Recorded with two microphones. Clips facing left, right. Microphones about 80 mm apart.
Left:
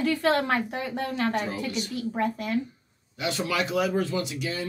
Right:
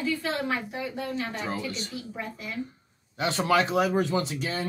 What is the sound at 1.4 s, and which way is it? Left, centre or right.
Speech, right.